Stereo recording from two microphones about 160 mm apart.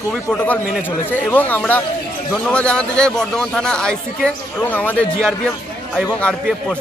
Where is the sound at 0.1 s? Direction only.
5° left (ahead or behind).